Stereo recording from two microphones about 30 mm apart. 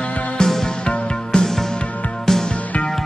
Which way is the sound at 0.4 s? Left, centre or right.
Left.